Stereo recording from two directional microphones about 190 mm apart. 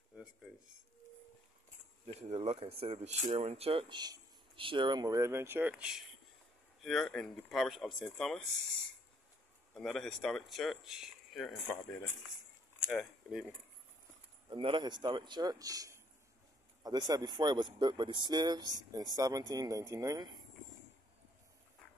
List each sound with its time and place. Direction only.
0.1 s a sound: 5° right (ahead or behind)
2.2 s speech: 35° right (ahead or behind); by 8.5 s centre (ahead or behind)
9.8 s speech: centre (ahead or behind)
12.8 s speech: centre (ahead or behind)
14.5 s speech: 25° right (ahead or behind)
17.1 s speech: 20° right (ahead or behind)